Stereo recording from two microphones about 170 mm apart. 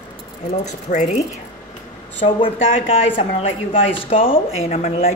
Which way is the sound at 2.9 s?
30° left (ahead or behind).